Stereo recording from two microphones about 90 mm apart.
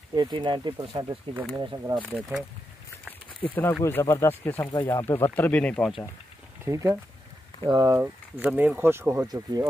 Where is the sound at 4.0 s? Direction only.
35° left (ahead or behind).